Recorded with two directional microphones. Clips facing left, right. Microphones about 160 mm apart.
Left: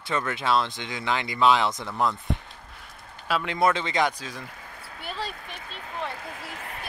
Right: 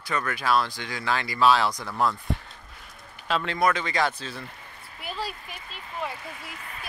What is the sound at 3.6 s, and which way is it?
Speech, 25° left (ahead or behind).